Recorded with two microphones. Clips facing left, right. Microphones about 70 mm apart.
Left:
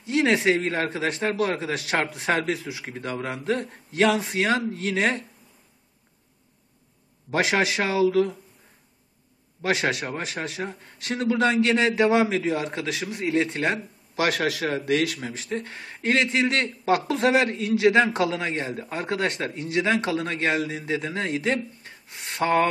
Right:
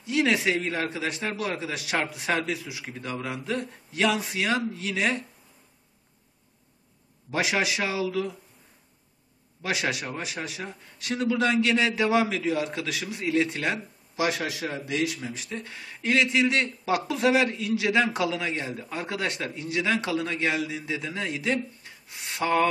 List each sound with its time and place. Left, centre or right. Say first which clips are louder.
0.0 s a man's voice: left 3 dB; left
7.2 s a man's voice: left 3 dB; left
9.6 s a man's voice: left 4 dB; left
14.1 s a man's voice: left 3 dB; left
15.2 s a man's voice: left 4 dB; left